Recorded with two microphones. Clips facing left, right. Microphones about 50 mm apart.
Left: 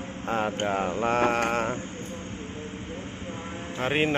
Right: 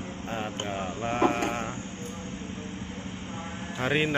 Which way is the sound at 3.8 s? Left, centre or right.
Left.